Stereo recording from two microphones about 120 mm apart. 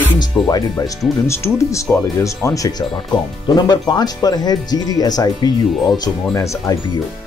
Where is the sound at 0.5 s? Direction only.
35° left (ahead or behind).